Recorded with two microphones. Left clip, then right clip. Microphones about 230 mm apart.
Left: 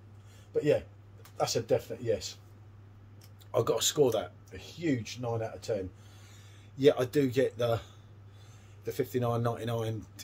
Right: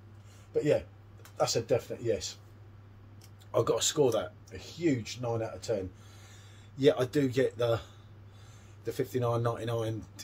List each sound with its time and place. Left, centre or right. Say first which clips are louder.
1.3 s speech: right 1 dB; centre
3.5 s speech: even; centre
6.8 s speech: left 1 dB; centre